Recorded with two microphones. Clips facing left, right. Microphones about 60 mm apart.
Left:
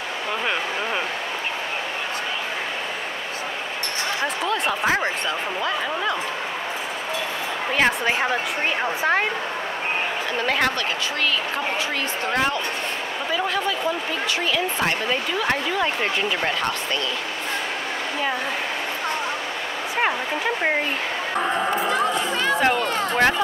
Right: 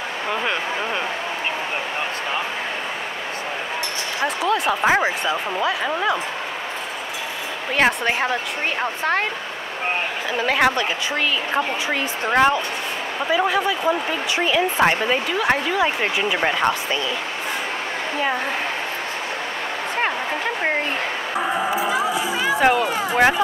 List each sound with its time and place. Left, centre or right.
4.4 s a woman's voice: centre
7.7 s a woman's voice: centre
10.3 s a woman's voice: centre
12.3 s a woman's voice: right
15.3 s a woman's voice: centre
21.4 s speech: centre